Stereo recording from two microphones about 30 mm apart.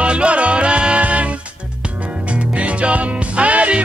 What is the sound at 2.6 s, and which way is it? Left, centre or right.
Music, right.